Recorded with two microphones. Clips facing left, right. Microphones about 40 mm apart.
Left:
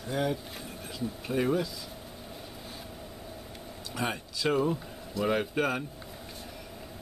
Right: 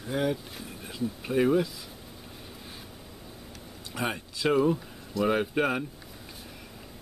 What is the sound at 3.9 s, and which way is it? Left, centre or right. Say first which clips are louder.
Speech: right 1 dB; centre.